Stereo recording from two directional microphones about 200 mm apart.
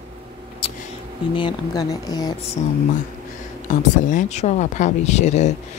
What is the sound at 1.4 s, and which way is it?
Speech, 20° left (ahead or behind).